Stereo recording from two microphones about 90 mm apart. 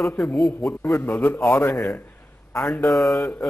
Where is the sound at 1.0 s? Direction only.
20° left (ahead or behind).